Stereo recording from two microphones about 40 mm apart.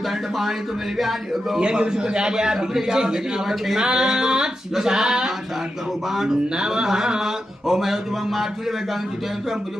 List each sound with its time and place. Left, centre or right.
0.9 s speech: centre
1.6 s a man's voice: right
6.5 s speech: centre